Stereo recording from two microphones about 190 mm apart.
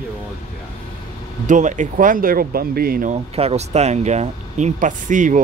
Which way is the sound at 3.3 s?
35° right (ahead or behind).